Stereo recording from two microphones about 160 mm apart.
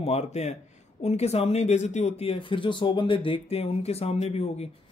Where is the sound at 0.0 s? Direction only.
40° left (ahead or behind).